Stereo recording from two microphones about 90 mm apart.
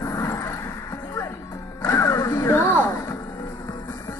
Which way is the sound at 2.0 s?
30° left (ahead or behind).